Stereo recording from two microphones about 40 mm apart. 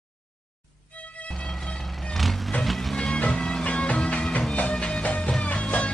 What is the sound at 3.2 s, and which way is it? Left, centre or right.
Music, left.